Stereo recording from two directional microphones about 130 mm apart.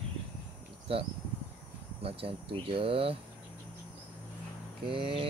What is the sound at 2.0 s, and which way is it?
Speech, 45° right (ahead or behind).